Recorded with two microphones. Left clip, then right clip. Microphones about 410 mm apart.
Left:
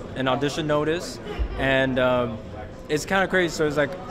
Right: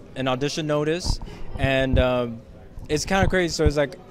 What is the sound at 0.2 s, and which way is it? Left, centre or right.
Speech, right.